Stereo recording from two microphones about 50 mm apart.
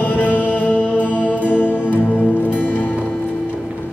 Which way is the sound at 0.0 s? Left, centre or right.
Left.